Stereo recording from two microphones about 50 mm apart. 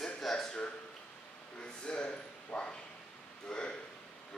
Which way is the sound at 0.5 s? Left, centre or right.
Left.